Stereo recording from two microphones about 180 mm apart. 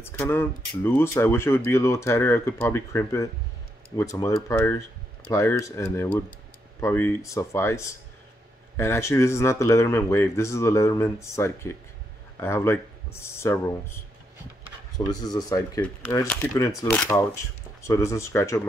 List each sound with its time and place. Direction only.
0.0 s speech: 10° left (ahead or behind)